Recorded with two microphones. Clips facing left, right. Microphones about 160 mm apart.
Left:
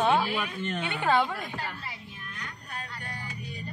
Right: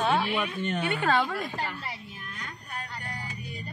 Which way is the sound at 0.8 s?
15° left (ahead or behind).